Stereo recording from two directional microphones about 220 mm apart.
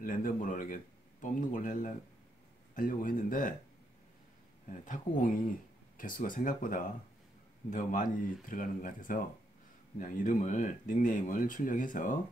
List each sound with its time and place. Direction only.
0.0 s speech: 40° left (ahead or behind)
4.8 s speech: 35° left (ahead or behind)